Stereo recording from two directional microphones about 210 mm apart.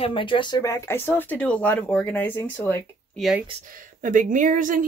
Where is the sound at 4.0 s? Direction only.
40° right (ahead or behind).